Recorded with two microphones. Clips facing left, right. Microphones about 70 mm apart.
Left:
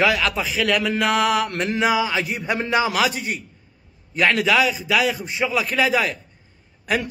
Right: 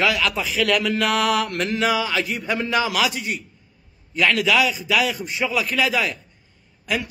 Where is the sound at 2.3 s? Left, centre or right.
Left.